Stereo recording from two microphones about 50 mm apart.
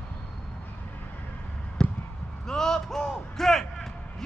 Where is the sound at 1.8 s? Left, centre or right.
Centre.